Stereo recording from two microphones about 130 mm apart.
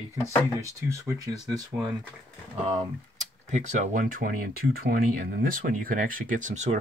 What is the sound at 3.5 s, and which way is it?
Speech, 65° right (ahead or behind).